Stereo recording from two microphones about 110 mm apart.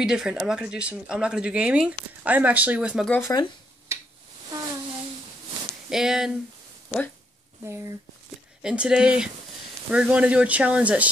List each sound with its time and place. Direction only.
0.0 s speech: 5° right (ahead or behind)
3.3 s speech: 25° left (ahead or behind)
5.9 s speech: 5° right (ahead or behind)
7.6 s speech: 25° right (ahead or behind)
8.6 s speech: 10° right (ahead or behind)